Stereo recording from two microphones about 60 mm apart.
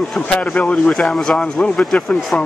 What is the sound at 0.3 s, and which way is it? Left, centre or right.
A man's voice, left.